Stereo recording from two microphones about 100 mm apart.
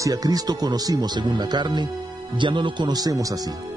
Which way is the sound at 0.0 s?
40° right (ahead or behind).